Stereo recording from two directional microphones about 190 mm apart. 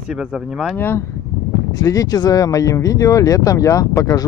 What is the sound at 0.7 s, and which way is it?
Speech, 10° left (ahead or behind).